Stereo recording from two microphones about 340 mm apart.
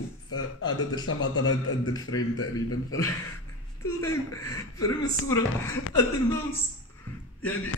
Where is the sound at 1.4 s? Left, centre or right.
Centre.